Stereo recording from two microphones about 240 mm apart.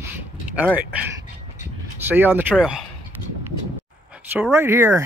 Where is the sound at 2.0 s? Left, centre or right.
Centre.